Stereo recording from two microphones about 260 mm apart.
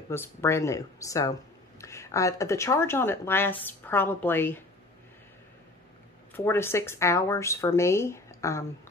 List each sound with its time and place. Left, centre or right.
0.1 s speech: centre
6.3 s speech: centre